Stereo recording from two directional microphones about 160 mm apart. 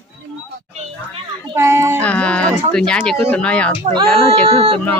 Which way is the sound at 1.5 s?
20° right (ahead or behind).